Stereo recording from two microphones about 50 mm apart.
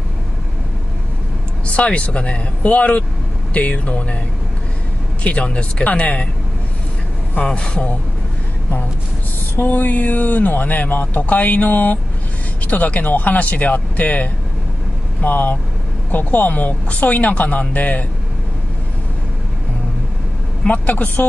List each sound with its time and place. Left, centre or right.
1.7 s speech: left
5.2 s speech: left
7.4 s speech: centre
9.6 s speech: left
20.6 s speech: left